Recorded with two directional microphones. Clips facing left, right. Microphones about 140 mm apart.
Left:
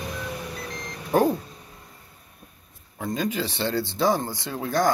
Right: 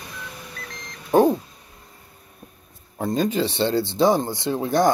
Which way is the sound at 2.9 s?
35° right (ahead or behind).